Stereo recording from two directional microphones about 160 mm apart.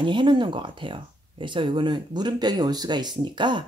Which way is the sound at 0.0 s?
30° right (ahead or behind).